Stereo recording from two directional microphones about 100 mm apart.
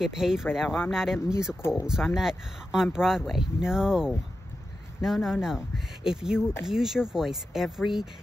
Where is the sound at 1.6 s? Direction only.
25° left (ahead or behind).